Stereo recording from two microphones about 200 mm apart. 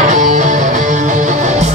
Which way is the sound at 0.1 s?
35° right (ahead or behind).